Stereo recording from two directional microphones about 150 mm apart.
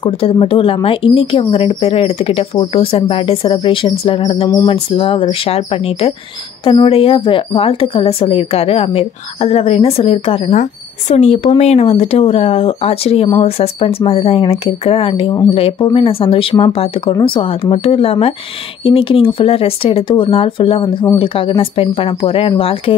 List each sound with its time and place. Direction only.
0.0 s speech: 40° left (ahead or behind)
10.5 s speech: 50° left (ahead or behind)